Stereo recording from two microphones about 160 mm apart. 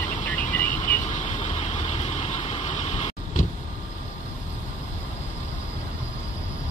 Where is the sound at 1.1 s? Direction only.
45° left (ahead or behind).